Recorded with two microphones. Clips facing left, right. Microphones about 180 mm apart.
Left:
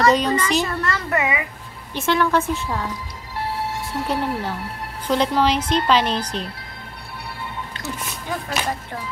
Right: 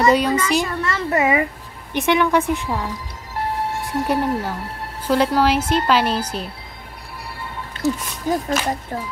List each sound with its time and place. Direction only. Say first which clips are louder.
0.0 s a woman's voice: right 1 dB; 10° right (ahead or behind)
0.8 s a sound: right 2 dB; 25° right (ahead or behind)
1.2 s speech: right 6 dB; 45° right (ahead or behind)
2.0 s a woman's voice: right 2 dB; 15° right (ahead or behind)
4.1 s a woman's voice: right 3 dB; 10° right (ahead or behind)
7.8 s speech: right 13 dB; 40° right (ahead or behind)